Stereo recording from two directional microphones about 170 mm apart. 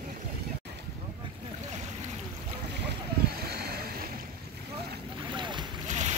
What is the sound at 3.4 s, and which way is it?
Boat, 65° right (ahead or behind).